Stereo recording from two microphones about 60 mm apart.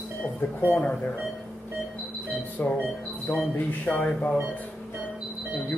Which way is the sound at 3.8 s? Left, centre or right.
Centre.